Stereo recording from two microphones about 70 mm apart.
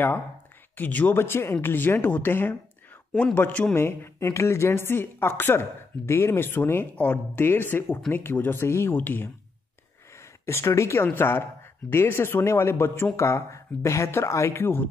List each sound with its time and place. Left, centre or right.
0.7 s speech: left
1.1 s a woman's voice: left
3.7 s a woman's voice: left
10.1 s speech: left
11.1 s a woman's voice: left